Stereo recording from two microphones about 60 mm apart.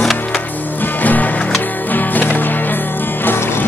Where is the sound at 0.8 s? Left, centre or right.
Left.